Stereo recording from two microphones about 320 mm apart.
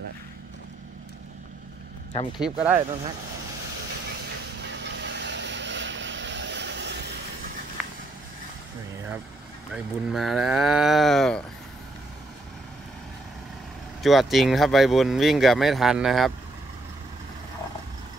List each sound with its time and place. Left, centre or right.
2.3 s speech: centre
4.7 s vehicle: right
7.8 s vehicle: centre
9.7 s speech: centre
14.0 s speech: centre